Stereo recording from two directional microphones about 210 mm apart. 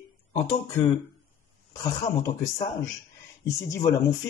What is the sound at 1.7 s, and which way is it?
Speech, 15° left (ahead or behind).